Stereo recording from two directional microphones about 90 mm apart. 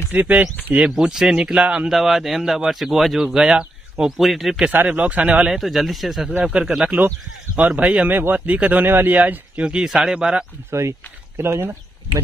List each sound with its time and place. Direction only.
0.1 s speech: 20° right (ahead or behind); by 4.6 s centre (ahead or behind)
4.6 s speech: 15° right (ahead or behind)
5.6 s speech: centre (ahead or behind)
10.7 s speech: 30° right (ahead or behind)